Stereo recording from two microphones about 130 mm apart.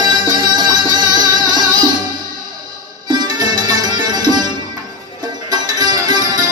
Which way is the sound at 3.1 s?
35° right (ahead or behind).